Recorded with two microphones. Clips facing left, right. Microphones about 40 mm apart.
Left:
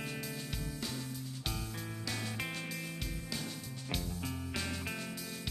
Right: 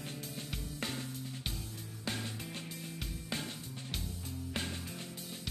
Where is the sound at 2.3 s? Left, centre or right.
Left.